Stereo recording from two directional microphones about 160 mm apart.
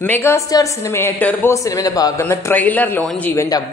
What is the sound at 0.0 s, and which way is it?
Speech, 15° left (ahead or behind).